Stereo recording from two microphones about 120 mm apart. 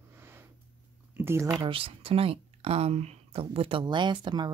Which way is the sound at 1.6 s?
50° right (ahead or behind).